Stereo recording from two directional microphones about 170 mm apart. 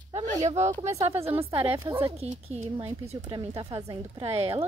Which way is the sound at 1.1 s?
15° right (ahead or behind).